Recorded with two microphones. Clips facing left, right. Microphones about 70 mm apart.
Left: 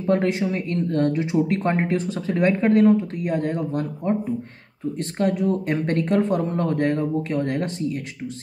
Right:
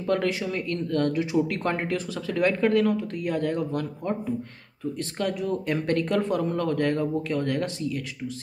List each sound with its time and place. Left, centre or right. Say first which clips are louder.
0.0 s speech: left 4 dB; left
5.2 s speech: left 6 dB; left